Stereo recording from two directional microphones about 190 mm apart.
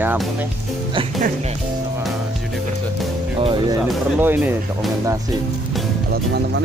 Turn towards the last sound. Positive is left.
turn(degrees=-10)  # may be behind; listen again after turning